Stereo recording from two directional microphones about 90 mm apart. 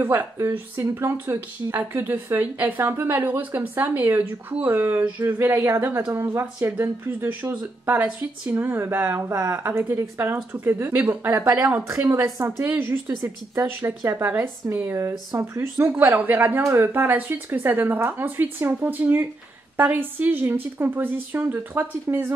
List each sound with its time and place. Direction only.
0.0 s speech: 25° right (ahead or behind)